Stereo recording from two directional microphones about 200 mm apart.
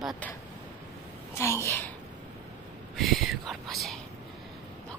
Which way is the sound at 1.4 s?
15° left (ahead or behind).